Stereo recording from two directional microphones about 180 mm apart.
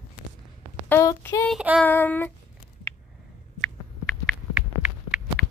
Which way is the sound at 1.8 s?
10° left (ahead or behind).